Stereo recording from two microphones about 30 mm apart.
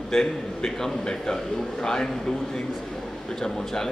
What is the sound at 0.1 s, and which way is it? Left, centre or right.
A man's voice, centre.